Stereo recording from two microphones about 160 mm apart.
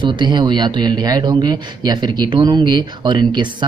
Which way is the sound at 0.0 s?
30° right (ahead or behind).